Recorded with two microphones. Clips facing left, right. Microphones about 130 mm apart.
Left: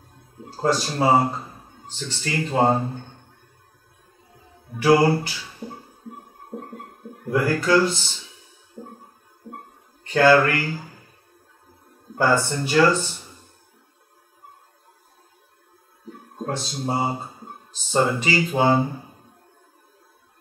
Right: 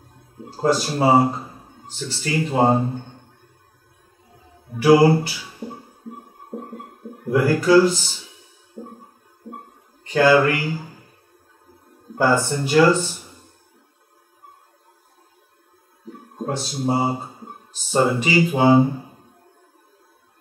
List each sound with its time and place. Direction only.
0.4 s speech: 15° right (ahead or behind)
4.8 s music: 10° right (ahead or behind)
8.8 s a sound: 30° right (ahead or behind)
10.0 s speech: 10° right (ahead or behind)
12.2 s speech: 15° right (ahead or behind)
16.1 s speech: 15° right (ahead or behind)